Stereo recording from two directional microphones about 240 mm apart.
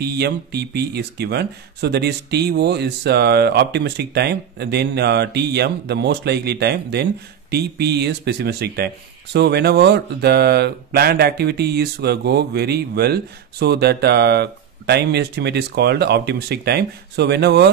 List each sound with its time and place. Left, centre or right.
0.0 s speech: right